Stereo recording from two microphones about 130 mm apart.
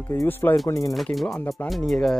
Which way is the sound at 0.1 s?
20° left (ahead or behind).